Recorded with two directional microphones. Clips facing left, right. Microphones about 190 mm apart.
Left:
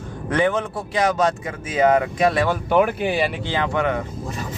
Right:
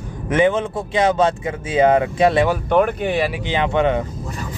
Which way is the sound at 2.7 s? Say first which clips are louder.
Even; 5° left (ahead or behind).